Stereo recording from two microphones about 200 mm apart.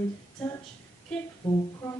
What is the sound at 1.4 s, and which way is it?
Speech, 10° left (ahead or behind).